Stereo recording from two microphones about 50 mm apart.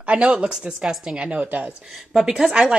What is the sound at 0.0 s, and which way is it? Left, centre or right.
Speech, right.